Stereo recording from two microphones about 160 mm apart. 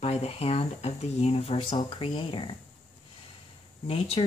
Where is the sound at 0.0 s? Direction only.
40° left (ahead or behind).